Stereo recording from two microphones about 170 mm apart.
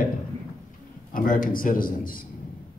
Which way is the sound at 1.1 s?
55° left (ahead or behind).